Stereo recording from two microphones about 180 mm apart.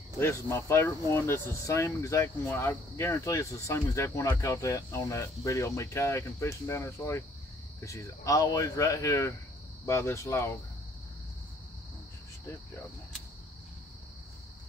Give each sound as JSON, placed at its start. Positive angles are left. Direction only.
{"t": 0.2, "sound": "speech", "side_deg": 15}